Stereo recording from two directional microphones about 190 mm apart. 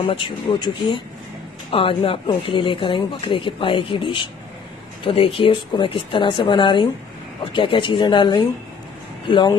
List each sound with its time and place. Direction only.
0.1 s speech: 25° left (ahead or behind)